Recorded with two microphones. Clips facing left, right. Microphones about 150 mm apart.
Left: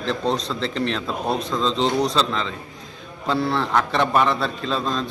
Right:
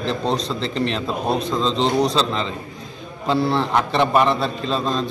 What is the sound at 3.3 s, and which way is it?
A man's voice, 30° right (ahead or behind).